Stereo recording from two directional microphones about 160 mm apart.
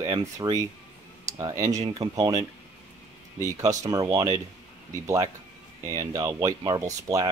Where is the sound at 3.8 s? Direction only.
20° right (ahead or behind).